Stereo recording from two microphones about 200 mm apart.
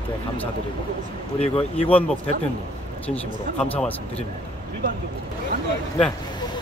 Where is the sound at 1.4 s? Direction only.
30° left (ahead or behind).